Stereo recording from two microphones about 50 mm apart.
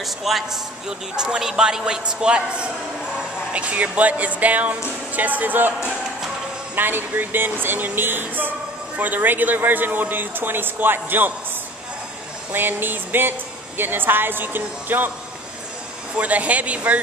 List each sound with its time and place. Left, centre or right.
0.0 s a man's voice: centre; by 11.3 s right
12.5 s speech: right
16.2 s speech: right